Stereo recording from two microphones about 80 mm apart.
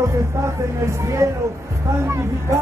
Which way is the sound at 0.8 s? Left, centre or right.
Right.